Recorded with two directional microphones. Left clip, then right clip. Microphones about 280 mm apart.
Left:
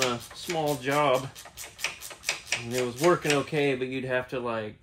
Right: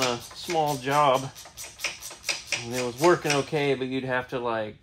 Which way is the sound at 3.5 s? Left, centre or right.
Centre.